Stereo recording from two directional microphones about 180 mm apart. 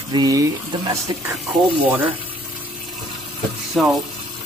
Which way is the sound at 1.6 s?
10° right (ahead or behind).